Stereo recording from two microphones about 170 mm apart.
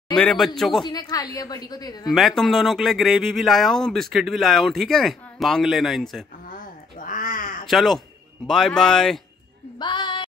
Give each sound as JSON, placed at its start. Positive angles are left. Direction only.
{"t": 0.1, "sound": "a man's voice", "side_deg": 5}
{"t": 0.8, "sound": "speech", "side_deg": 25}
{"t": 2.0, "sound": "speech", "side_deg": 0}
{"t": 6.5, "sound": "a sound", "side_deg": 55}
{"t": 7.6, "sound": "speech", "side_deg": 0}
{"t": 9.8, "sound": "a sound", "side_deg": 30}